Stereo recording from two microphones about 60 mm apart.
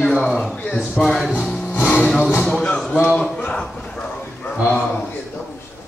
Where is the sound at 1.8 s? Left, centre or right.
Centre.